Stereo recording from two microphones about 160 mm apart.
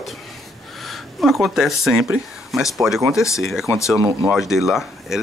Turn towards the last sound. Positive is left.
turn(degrees=0)  # may be behind; listen again after turning